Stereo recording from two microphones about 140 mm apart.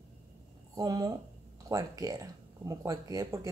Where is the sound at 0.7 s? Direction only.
30° right (ahead or behind).